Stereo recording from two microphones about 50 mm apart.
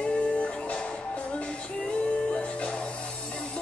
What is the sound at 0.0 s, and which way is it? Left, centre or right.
Music, left.